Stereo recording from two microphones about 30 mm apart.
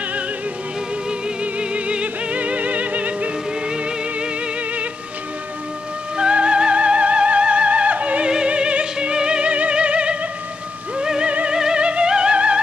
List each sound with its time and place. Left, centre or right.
1.6 s music: right
3.6 s music: right
6.3 s music: right
8.5 s music: right
9.5 s music: right
11.5 s music: right
11.8 s music: right